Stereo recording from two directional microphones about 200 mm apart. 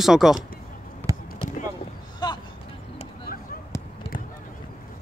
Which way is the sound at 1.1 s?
15° right (ahead or behind).